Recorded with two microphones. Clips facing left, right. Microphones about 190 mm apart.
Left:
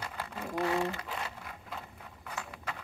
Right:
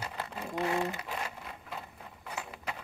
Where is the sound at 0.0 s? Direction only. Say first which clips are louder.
Right 1 dB; 15° right (ahead or behind).